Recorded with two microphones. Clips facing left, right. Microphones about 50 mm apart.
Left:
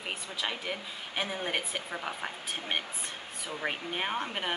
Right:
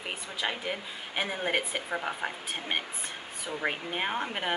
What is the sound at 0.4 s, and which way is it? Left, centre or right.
A woman's voice, centre.